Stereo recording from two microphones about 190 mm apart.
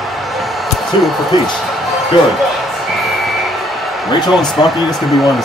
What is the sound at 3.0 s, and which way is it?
Music, centre (ahead or behind).